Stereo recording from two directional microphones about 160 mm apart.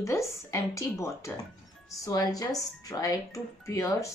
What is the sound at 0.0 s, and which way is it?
Speech, 15° left (ahead or behind).